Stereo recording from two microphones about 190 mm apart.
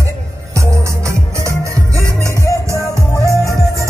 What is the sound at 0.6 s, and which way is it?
Music, 15° right (ahead or behind).